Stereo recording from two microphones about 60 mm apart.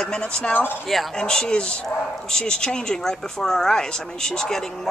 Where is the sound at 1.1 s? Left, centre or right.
Centre.